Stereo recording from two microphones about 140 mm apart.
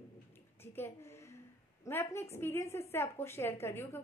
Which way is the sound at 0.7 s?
15° left (ahead or behind).